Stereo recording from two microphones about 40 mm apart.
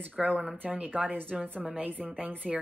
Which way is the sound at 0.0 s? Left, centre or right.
Right.